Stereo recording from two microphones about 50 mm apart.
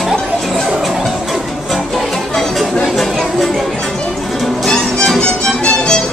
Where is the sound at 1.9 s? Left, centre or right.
Centre.